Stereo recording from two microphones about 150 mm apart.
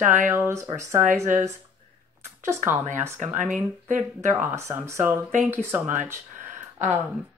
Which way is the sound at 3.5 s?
55° right (ahead or behind).